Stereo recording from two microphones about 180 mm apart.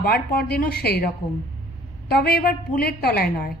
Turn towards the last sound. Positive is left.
turn(degrees=60)  # may be behind; listen again after turning